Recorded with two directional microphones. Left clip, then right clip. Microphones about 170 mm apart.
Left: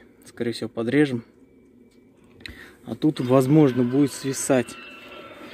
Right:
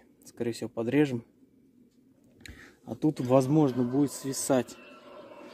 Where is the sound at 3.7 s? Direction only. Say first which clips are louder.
Left 7 dB; 40° left (ahead or behind).